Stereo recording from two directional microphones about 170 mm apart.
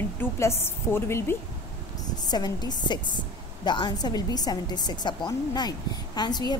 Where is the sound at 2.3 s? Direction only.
25° left (ahead or behind).